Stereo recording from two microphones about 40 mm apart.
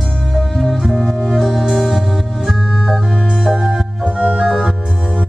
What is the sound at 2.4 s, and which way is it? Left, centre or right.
Organ, centre.